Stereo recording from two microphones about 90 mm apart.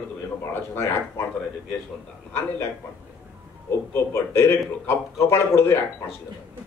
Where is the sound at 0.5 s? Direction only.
25° left (ahead or behind).